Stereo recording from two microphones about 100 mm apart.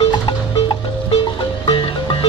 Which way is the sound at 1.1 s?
55° left (ahead or behind).